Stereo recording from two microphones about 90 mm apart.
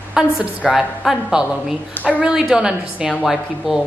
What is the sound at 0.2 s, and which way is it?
A woman's voice, 5° right (ahead or behind).